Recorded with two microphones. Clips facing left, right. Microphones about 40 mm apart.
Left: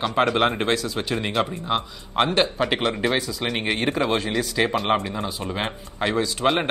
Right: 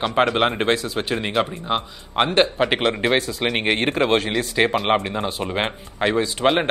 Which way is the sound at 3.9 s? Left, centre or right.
Right.